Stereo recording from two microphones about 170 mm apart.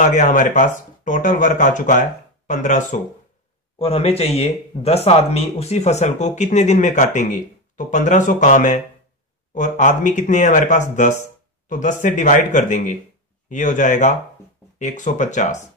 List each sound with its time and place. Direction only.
0.0 s speech: 45° left (ahead or behind)
3.7 s speech: 35° left (ahead or behind)